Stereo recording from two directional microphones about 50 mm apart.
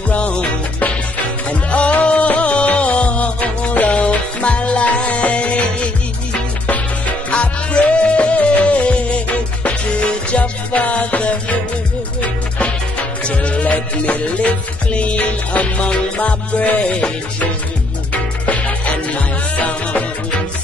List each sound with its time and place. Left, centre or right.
0.1 s music: left
6.7 s music: left